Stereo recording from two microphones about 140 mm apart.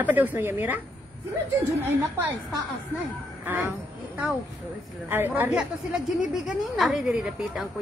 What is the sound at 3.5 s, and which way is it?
A woman's voice, 10° right (ahead or behind).